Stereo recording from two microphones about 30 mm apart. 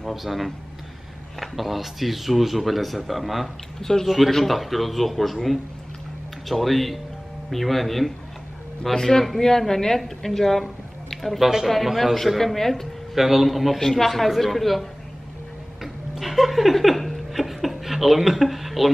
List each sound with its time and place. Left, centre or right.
0.1 s speech: centre
8.9 s a woman's voice: centre
11.2 s a man's voice: centre
12.4 s a woman's voice: centre
13.1 s a man's voice: centre
13.7 s speech: centre
16.2 s chuckle: centre
16.7 s speech: centre
17.3 s a sound: centre